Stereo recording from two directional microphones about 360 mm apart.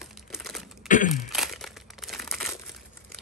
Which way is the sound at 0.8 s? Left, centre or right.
Left.